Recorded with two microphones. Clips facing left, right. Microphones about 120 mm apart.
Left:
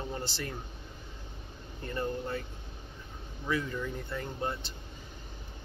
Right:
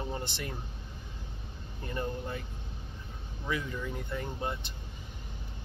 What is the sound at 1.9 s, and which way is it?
Speech, 20° right (ahead or behind).